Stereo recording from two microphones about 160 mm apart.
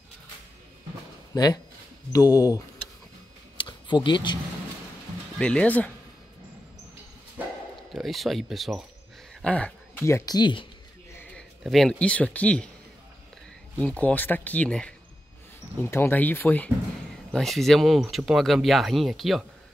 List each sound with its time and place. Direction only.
1.3 s speech: 25° left (ahead or behind)
3.5 s a sound: 30° left (ahead or behind)
5.4 s speech: 10° left (ahead or behind)
7.9 s speech: centre (ahead or behind)
9.3 s a sound: 5° left (ahead or behind)
10.0 s speech: 20° left (ahead or behind)
11.6 s speech: centre (ahead or behind)
13.7 s speech: 10° left (ahead or behind)